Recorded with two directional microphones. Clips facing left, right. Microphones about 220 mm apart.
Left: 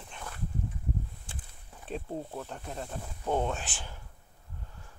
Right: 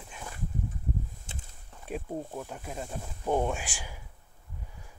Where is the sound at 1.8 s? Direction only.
10° right (ahead or behind).